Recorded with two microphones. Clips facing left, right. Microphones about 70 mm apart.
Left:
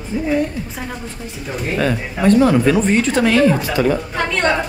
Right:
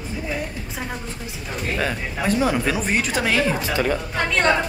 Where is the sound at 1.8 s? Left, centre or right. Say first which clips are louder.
Left 9 dB; centre.